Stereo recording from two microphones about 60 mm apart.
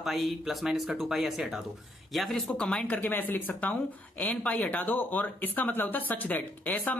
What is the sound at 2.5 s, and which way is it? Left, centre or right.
Speech, centre.